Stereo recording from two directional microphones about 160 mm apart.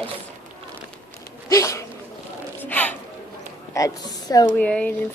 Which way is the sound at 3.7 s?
20° left (ahead or behind).